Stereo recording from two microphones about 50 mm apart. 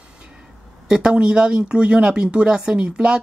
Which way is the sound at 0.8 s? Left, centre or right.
Centre.